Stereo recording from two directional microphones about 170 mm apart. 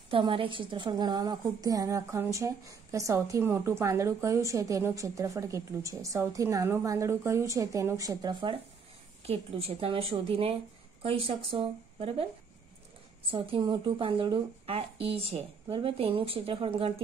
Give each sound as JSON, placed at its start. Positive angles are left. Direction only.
{"t": 0.1, "sound": "a woman's voice", "side_deg": -30}
{"t": 13.3, "sound": "speech", "side_deg": -30}